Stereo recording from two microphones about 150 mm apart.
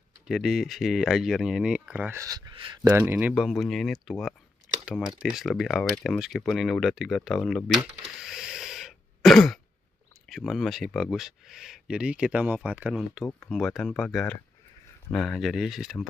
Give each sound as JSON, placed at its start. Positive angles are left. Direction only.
{"t": 0.3, "sound": "speech", "side_deg": 0}
{"t": 2.9, "sound": "speech", "side_deg": -10}
{"t": 8.2, "sound": "throat clearing", "side_deg": -5}
{"t": 10.2, "sound": "speech", "side_deg": 0}
{"t": 13.2, "sound": "speech", "side_deg": 15}
{"t": 13.5, "sound": "speech", "side_deg": 0}